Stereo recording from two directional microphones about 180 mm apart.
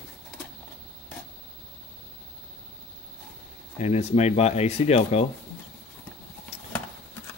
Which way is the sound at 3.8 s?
35° left (ahead or behind).